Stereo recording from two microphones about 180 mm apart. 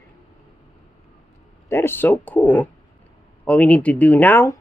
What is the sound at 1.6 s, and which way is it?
Speech, 15° left (ahead or behind).